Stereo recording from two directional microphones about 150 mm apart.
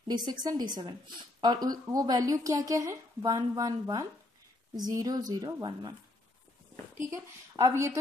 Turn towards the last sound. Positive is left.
turn(degrees=-20)  # may be behind; listen again after turning